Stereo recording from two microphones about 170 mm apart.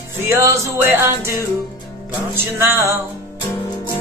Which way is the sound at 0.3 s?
15° right (ahead or behind).